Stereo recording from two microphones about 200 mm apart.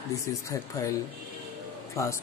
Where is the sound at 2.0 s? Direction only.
15° left (ahead or behind).